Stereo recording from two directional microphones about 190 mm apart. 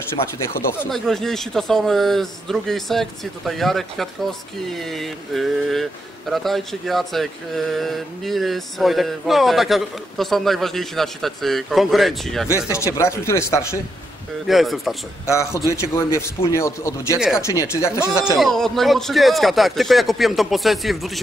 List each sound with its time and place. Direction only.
0.2 s speech: 30° left (ahead or behind)
0.8 s speech: centre (ahead or behind)
12.4 s a man's voice: 15° left (ahead or behind)
14.5 s speech: centre (ahead or behind)
15.2 s a man's voice: 15° left (ahead or behind)
18.4 s speech: centre (ahead or behind)